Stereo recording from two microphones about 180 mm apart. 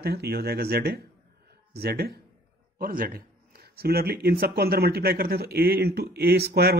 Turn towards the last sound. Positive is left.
turn(degrees=-60)  # may be behind; listen again after turning